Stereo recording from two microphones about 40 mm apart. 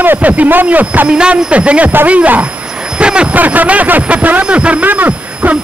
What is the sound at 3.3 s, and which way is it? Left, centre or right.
A man's voice, right.